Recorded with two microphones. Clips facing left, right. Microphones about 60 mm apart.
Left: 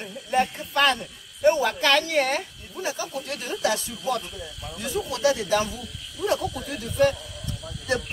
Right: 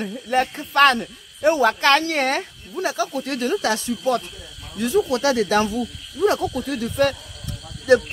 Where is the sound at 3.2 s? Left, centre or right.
Right.